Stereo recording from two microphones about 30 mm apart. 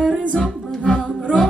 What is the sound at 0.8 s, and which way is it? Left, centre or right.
Music, left.